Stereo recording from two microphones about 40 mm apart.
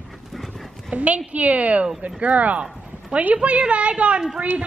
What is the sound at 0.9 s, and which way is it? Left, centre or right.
A woman's voice, right.